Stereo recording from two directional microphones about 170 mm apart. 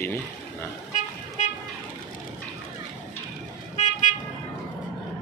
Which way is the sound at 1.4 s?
45° left (ahead or behind).